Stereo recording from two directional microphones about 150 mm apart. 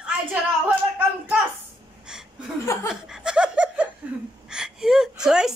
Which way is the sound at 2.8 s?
5° right (ahead or behind).